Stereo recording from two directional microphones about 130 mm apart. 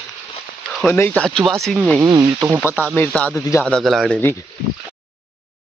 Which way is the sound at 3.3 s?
25° left (ahead or behind).